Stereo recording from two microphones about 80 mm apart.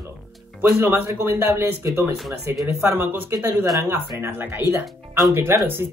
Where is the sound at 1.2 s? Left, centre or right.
Right.